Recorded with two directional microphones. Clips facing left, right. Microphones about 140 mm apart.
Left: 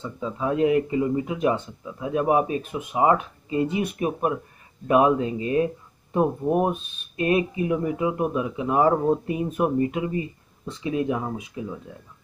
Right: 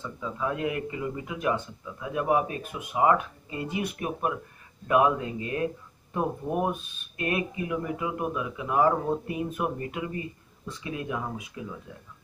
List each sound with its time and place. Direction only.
0.0 s speech: 25° left (ahead or behind)